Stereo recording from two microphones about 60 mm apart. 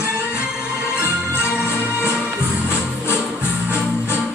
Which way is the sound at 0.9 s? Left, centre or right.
Left.